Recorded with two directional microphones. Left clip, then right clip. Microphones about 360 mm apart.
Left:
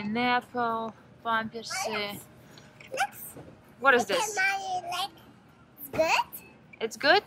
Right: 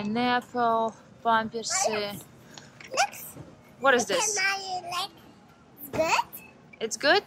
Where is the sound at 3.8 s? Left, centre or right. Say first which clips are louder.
Even; centre.